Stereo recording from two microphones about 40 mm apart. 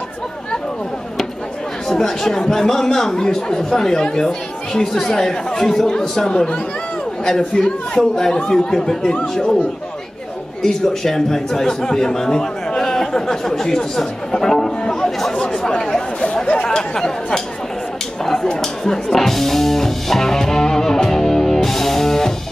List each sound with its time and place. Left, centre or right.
1.9 s speech: centre
10.6 s speech: centre
16.4 s chatter: left
18.2 s a sound: centre
18.6 s speech: centre
21.6 s music: centre